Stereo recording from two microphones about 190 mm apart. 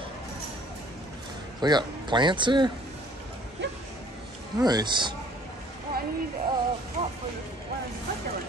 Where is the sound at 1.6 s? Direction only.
25° right (ahead or behind).